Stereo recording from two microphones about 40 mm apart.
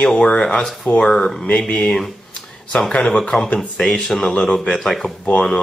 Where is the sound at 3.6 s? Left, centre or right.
Centre.